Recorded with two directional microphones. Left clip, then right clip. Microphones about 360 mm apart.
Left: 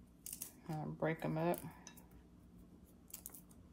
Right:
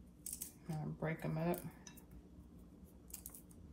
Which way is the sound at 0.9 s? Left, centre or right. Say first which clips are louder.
Left 4 dB; left.